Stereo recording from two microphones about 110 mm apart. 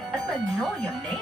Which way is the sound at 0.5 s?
5° left (ahead or behind).